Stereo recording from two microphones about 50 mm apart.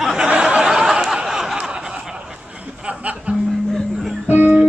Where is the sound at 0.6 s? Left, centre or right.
Centre.